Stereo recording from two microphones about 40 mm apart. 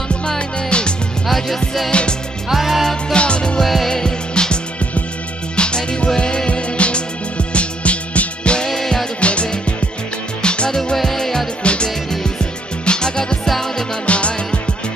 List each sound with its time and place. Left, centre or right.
0.4 s music: left
1.2 s music: centre
1.9 s music: left
2.5 s music: centre
3.1 s music: left
3.6 s music: centre
3.9 s music: centre
5.6 s music: left
8.6 s music: centre
9.2 s music: left
11.0 s music: centre
11.6 s music: left
14.0 s music: left